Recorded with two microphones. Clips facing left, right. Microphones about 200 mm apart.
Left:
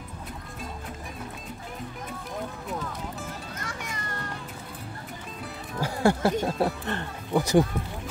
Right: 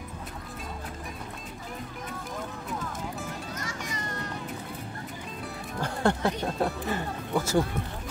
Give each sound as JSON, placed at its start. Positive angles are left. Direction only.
{"t": 3.5, "sound": "music", "side_deg": 55}
{"t": 5.8, "sound": "music", "side_deg": 5}
{"t": 6.4, "sound": "speech", "side_deg": 0}
{"t": 7.3, "sound": "speech", "side_deg": 20}